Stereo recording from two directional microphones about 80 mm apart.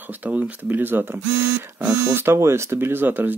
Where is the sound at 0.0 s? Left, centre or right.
Right.